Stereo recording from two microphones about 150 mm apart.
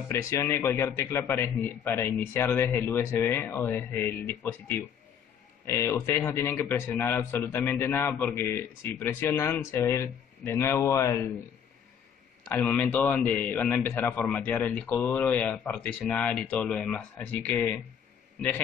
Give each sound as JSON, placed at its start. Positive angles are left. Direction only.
{"t": 0.1, "sound": "speech", "side_deg": 20}
{"t": 12.4, "sound": "speech", "side_deg": 10}